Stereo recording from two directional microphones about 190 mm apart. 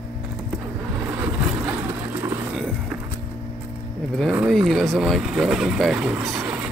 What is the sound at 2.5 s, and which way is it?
Music, centre (ahead or behind).